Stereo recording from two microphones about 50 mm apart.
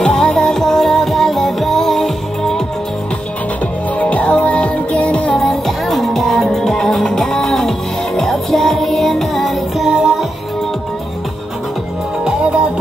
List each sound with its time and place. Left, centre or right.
0.0 s music: centre
4.0 s music: left
5.4 s music: centre
9.8 s music: centre
12.3 s music: right